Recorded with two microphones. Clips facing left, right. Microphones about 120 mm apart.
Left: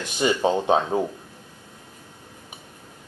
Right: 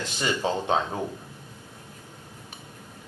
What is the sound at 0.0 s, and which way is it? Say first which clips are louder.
Speech: left 6 dB; 15° left (ahead or behind).